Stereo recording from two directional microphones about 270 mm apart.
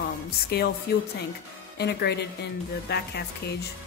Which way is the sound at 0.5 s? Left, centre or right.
Left.